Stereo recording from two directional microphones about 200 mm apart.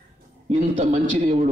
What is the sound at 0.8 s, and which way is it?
Speech, 35° right (ahead or behind).